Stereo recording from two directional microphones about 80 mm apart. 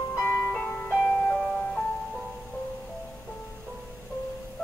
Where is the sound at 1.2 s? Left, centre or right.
Centre.